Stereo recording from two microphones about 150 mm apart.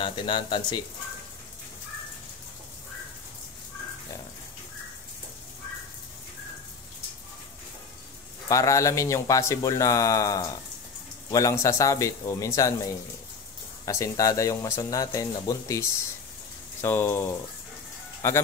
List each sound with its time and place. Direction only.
0.0 s speech: 30° left (ahead or behind)
8.5 s speech: 20° left (ahead or behind)